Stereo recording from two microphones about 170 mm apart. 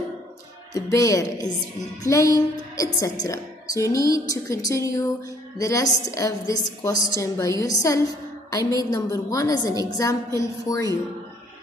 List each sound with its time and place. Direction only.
0.7 s a woman's voice: 20° left (ahead or behind)